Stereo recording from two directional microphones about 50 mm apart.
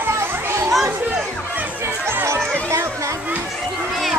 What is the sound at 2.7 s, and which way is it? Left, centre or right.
Children playing, right.